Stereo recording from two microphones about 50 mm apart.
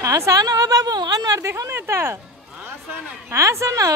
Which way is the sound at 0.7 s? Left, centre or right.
Right.